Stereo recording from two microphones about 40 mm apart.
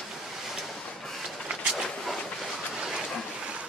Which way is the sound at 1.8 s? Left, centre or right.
Centre.